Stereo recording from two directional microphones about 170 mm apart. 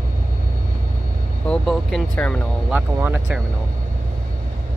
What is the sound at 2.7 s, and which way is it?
Speech, 10° right (ahead or behind).